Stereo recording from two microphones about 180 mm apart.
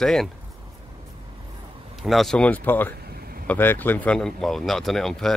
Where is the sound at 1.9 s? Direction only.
Centre (ahead or behind).